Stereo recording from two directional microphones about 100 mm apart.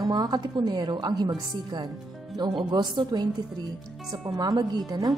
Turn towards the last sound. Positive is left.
turn(degrees=-40)  # may be behind; listen again after turning